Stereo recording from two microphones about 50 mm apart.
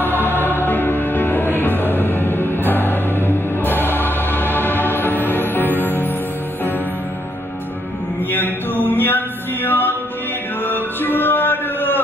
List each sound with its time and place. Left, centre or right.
0.2 s music: left
8.3 s music: left